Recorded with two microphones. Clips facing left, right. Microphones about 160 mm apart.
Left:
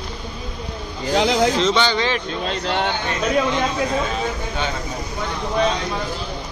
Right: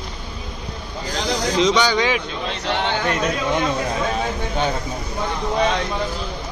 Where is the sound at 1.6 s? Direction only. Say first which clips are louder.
Right 1 dB; 10° right (ahead or behind).